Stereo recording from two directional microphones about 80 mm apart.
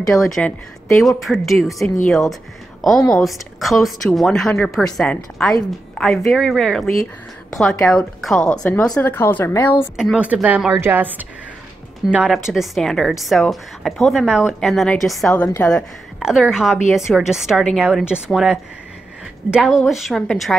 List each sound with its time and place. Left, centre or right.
0.1 s a woman's voice: centre
8.5 s a woman's voice: centre
10.1 s a woman's voice: centre
12.3 s a woman's voice: centre
15.3 s speech: left
16.2 s a woman's voice: centre
19.6 s a woman's voice: centre